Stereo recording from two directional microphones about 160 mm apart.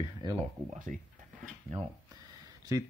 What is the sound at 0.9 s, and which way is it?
Speech, 60° right (ahead or behind).